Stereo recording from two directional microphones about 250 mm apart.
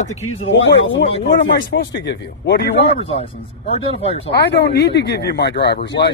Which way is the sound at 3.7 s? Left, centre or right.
Left.